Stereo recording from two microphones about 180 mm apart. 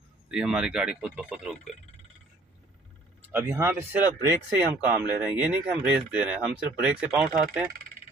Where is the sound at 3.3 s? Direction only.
15° right (ahead or behind).